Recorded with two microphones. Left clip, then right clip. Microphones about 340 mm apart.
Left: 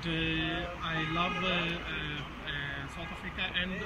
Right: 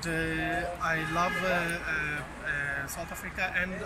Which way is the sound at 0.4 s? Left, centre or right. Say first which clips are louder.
Right 3 dB; right.